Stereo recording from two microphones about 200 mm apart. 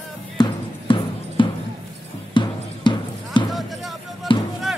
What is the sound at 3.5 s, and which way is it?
Music, centre (ahead or behind).